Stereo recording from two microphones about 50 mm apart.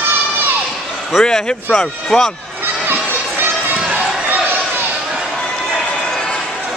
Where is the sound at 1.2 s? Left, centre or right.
Centre.